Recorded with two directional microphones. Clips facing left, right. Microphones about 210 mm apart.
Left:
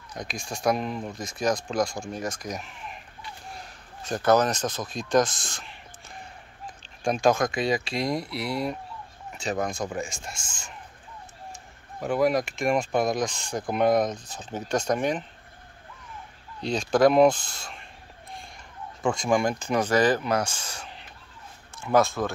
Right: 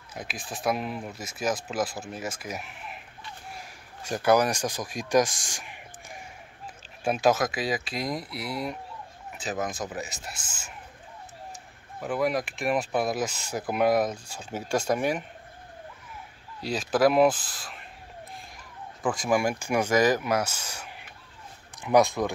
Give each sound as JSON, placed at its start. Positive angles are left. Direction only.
{"t": 0.1, "sound": "speech", "side_deg": -5}
{"t": 3.5, "sound": "a sound", "side_deg": -10}
{"t": 7.1, "sound": "speech", "side_deg": -5}
{"t": 12.0, "sound": "speech", "side_deg": 0}
{"t": 16.6, "sound": "speech", "side_deg": -5}
{"t": 19.0, "sound": "speech", "side_deg": -5}